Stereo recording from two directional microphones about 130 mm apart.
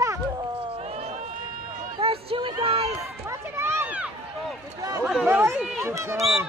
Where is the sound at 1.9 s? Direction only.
45° right (ahead or behind).